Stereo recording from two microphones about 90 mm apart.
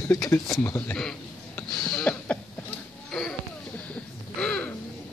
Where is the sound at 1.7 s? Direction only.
10° left (ahead or behind).